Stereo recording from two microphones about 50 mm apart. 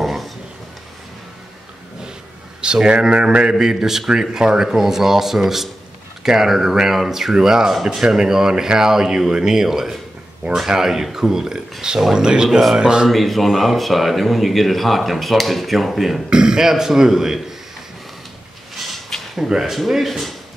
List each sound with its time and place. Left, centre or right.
0.0 s a sound: centre
2.6 s speech: centre
12.4 s speech: centre
12.7 s speech: centre
13.1 s speech: centre
16.3 s speech: centre
18.8 s a sound: centre
19.3 s speech: centre